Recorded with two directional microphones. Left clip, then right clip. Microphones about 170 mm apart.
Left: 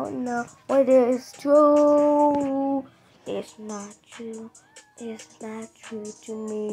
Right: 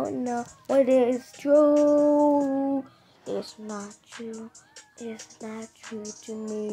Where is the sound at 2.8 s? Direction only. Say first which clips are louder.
Left 1 dB; 5° right (ahead or behind).